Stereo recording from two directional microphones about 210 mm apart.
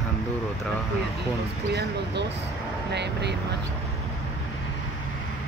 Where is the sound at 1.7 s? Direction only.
55° right (ahead or behind).